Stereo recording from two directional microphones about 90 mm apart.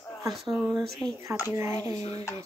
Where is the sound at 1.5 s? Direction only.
30° right (ahead or behind).